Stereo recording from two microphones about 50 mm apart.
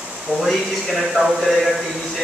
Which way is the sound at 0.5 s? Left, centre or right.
Centre.